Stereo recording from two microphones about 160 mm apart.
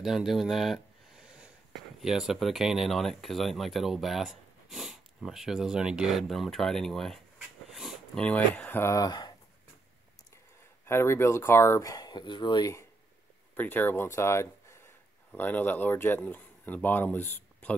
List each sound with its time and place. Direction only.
0.0 s speech: centre (ahead or behind); by 9.3 s 25° left (ahead or behind)
10.9 s speech: 15° left (ahead or behind)
13.6 s speech: 10° left (ahead or behind)